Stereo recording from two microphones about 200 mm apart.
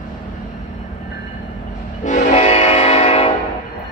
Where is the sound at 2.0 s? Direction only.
35° left (ahead or behind).